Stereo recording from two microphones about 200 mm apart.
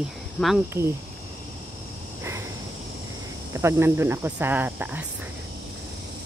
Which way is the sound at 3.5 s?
10° right (ahead or behind).